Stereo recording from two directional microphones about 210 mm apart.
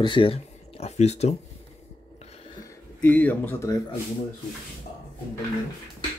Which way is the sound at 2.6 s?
10° left (ahead or behind).